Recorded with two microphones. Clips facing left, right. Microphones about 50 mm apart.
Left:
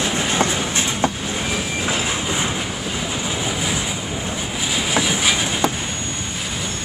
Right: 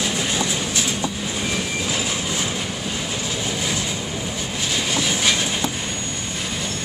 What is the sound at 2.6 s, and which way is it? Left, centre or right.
Vehicle, centre.